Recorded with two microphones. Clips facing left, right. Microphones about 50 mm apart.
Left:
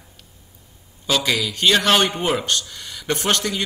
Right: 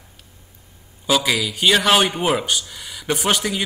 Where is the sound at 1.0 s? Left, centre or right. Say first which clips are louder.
Right 2 dB; centre.